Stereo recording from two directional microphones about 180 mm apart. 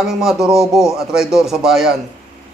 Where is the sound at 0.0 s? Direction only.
Centre (ahead or behind).